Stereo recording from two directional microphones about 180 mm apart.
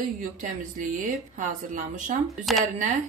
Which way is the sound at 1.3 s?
45° right (ahead or behind).